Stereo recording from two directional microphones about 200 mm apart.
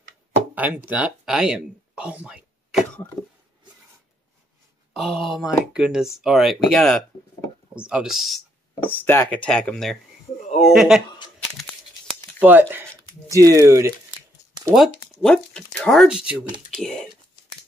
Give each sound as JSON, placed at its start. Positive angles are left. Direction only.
{"t": 0.6, "sound": "speech", "side_deg": -10}
{"t": 3.2, "sound": "a sound", "side_deg": 0}
{"t": 4.9, "sound": "speech", "side_deg": 0}
{"t": 8.8, "sound": "speech", "side_deg": 10}
{"t": 11.3, "sound": "a sound", "side_deg": 5}
{"t": 12.4, "sound": "speech", "side_deg": -10}
{"t": 14.7, "sound": "speech", "side_deg": 0}